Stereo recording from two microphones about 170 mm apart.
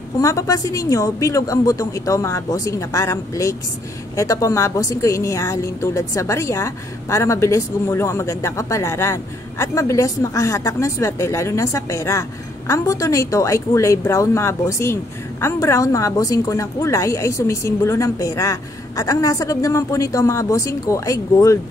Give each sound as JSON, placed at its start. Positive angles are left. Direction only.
{"t": 0.2, "sound": "a woman's voice", "side_deg": 20}